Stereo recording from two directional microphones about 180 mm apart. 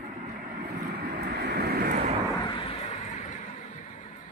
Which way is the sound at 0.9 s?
60° right (ahead or behind).